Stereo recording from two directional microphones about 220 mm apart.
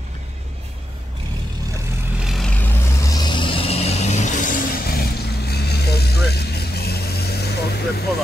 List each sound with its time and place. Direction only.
2.2 s vehicle: centre (ahead or behind); by 8.0 s 45° left (ahead or behind)